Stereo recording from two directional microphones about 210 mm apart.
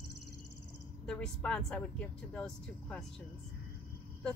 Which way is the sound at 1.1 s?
5° left (ahead or behind).